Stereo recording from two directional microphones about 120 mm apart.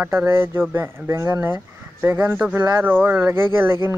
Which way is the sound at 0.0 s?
15° right (ahead or behind).